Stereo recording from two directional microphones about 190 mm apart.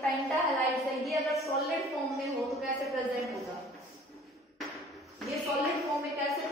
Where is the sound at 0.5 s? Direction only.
Centre (ahead or behind).